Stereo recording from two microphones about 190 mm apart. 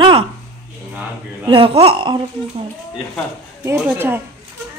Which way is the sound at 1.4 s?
30° right (ahead or behind).